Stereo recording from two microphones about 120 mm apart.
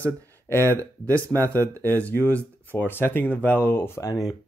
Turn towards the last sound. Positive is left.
turn(degrees=30)  # may be behind; listen again after turning